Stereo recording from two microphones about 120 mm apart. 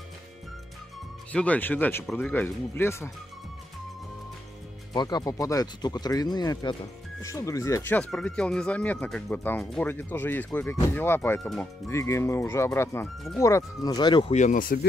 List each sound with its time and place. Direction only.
1.3 s speech: 10° left (ahead or behind)
4.9 s speech: 35° left (ahead or behind)
7.9 s speech: 5° left (ahead or behind); by 14.2 s 35° left (ahead or behind)
14.3 s speech: 80° left